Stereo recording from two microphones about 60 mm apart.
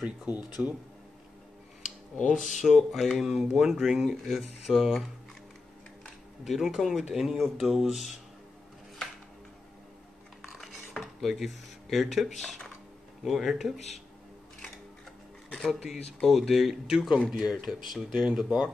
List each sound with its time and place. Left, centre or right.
0.0 s speech: centre
0.4 s speech: centre
2.2 s speech: centre
6.4 s speech: centre
10.5 s dishes: centre
13.2 s speech: centre
15.7 s speech: centre